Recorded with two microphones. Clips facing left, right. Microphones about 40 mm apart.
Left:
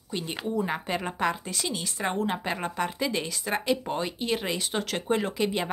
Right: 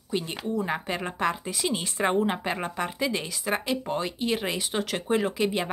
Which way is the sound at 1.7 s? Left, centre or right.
Right.